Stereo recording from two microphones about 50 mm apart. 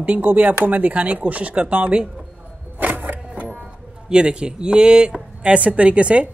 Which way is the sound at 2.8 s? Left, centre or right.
Right.